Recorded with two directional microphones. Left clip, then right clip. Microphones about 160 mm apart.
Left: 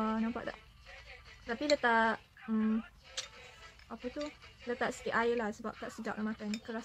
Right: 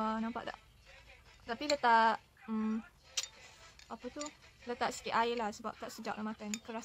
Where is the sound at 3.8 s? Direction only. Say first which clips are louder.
Left 3 dB; 30° right (ahead or behind).